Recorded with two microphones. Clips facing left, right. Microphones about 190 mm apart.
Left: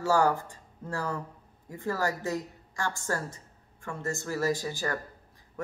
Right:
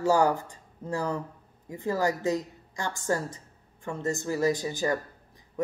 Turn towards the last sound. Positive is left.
turn(degrees=-20)  # may be behind; listen again after turning